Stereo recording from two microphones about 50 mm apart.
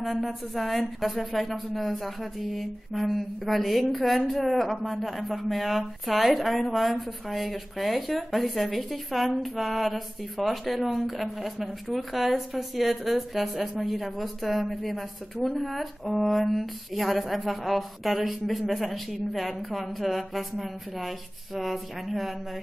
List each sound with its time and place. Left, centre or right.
0.0 s speech: centre